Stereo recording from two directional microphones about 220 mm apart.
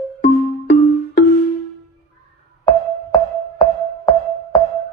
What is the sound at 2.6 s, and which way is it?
Music, 20° left (ahead or behind).